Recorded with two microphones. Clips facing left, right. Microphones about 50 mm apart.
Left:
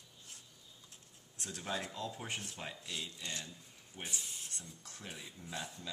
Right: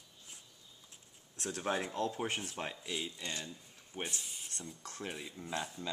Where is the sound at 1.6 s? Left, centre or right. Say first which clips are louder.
Right 5 dB; right.